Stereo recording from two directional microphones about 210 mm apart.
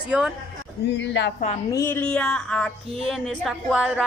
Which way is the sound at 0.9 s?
55° left (ahead or behind).